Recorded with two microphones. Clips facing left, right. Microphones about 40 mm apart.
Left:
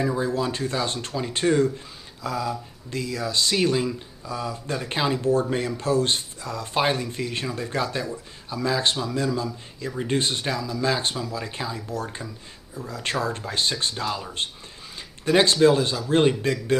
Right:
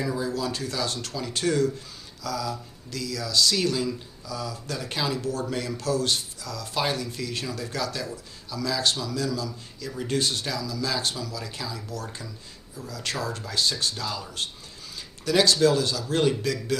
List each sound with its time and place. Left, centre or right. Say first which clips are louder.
0.0 s speech: left 4 dB; left